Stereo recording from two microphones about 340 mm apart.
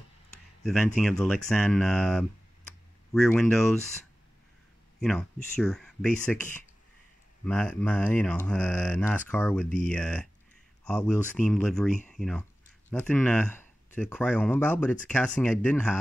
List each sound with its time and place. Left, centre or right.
0.7 s speech: centre
5.0 s speech: centre
7.4 s speech: centre